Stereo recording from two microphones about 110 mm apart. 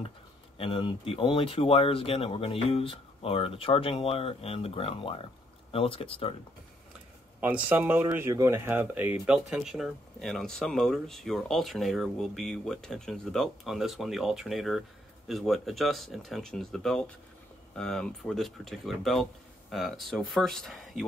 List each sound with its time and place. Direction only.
0.6 s speech: 55° left (ahead or behind)
7.3 s speech: 15° right (ahead or behind)
9.2 s speech: 5° right (ahead or behind)